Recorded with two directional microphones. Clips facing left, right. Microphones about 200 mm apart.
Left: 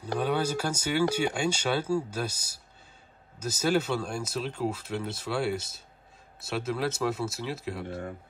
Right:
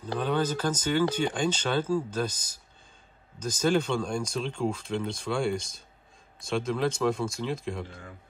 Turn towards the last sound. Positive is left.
turn(degrees=5)  # may be behind; listen again after turning